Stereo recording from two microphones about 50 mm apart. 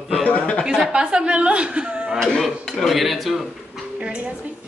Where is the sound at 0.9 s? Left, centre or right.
Centre.